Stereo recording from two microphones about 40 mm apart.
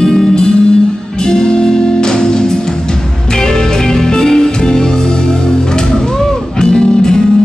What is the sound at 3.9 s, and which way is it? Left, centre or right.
Music, centre.